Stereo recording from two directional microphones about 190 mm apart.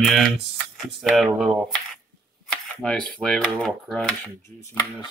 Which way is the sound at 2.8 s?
5° left (ahead or behind).